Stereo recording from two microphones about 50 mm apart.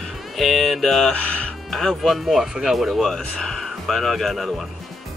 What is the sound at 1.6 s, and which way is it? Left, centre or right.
Speech, centre.